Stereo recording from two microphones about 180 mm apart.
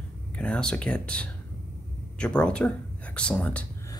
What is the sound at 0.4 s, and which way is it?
Speech, 5° left (ahead or behind).